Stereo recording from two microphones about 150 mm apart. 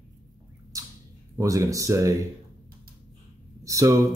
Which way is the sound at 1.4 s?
20° right (ahead or behind).